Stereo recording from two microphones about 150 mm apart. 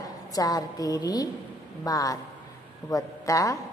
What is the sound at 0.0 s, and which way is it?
A woman's voice, 25° left (ahead or behind).